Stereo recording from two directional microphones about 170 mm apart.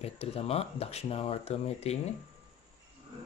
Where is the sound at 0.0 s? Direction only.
35° left (ahead or behind).